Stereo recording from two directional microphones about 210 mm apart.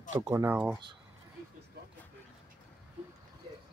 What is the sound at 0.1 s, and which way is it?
Speech, 15° right (ahead or behind).